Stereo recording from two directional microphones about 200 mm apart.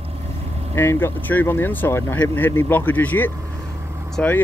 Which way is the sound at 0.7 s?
10° left (ahead or behind).